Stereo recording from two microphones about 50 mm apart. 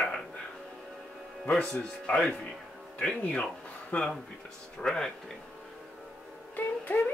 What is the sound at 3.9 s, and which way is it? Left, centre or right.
Speech, left.